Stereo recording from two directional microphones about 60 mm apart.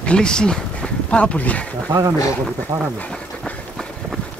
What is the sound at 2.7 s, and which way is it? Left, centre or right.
Speech, right.